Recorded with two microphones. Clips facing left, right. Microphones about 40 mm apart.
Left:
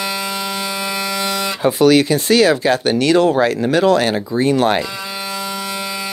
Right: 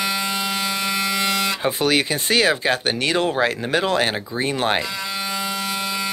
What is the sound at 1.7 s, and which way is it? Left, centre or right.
Speech, right.